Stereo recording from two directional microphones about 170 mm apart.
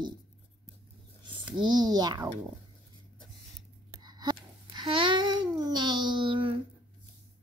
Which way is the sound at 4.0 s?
25° right (ahead or behind).